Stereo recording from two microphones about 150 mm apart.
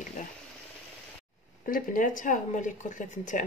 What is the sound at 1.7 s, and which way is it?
Speech, 60° left (ahead or behind).